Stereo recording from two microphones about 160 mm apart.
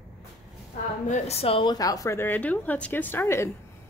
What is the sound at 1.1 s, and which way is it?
A woman's voice, 40° left (ahead or behind).